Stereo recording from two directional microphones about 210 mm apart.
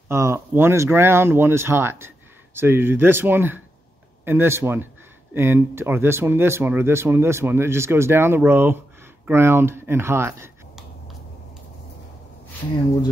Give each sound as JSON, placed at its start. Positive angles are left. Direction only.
{"t": 0.1, "sound": "speech", "side_deg": -15}